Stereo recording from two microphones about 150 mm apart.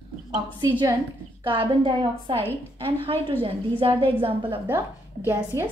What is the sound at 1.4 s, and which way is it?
A woman's voice, 35° right (ahead or behind).